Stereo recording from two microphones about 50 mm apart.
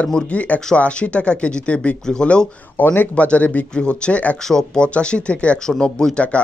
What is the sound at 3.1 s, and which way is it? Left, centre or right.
Speech, left.